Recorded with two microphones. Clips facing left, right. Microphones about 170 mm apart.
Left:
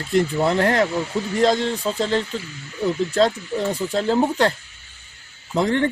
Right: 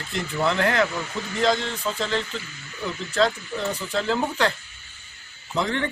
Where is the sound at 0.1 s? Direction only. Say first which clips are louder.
Left 6 dB; 40° left (ahead or behind).